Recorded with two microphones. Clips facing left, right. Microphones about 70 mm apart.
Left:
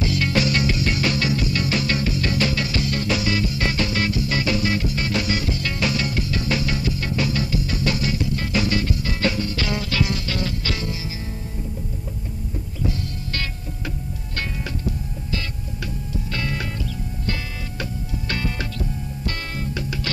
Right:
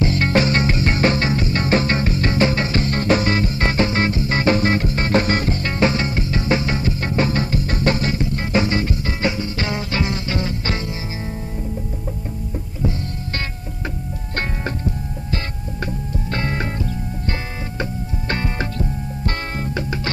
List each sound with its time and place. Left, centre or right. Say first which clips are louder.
0.0 s music: right 4 dB; right
15.3 s music: right 2 dB; right
18.3 s music: right 4 dB; right